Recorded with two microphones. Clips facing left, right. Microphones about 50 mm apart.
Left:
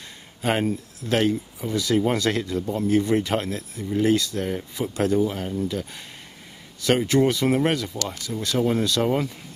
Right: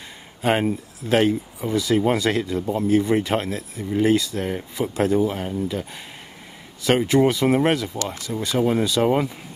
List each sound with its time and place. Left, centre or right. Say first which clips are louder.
0.4 s speech: right 3 dB; centre